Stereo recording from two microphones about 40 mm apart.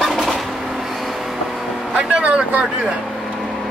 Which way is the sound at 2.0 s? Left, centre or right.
Right.